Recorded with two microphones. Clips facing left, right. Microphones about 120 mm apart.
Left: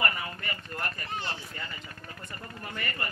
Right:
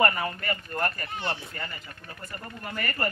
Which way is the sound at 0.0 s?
50° right (ahead or behind).